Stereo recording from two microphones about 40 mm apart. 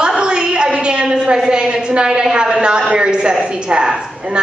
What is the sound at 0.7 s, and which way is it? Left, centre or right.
A woman's voice, right.